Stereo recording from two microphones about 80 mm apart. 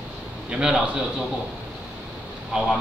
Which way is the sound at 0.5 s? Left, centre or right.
Centre.